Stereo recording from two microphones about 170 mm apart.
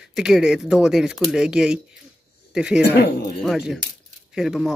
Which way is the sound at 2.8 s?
70° left (ahead or behind).